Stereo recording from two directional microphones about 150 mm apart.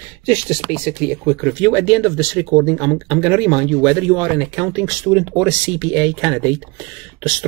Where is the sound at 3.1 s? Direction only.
10° right (ahead or behind).